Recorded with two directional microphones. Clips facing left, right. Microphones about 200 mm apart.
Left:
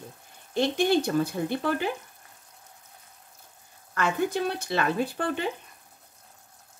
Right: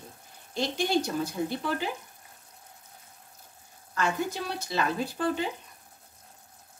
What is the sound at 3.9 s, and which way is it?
Speech, 60° left (ahead or behind).